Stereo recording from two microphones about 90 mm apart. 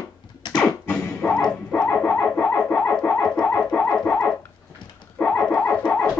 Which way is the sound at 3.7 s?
20° left (ahead or behind).